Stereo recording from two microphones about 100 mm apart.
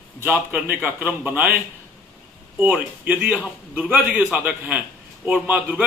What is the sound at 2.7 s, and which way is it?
A man's voice, 10° right (ahead or behind).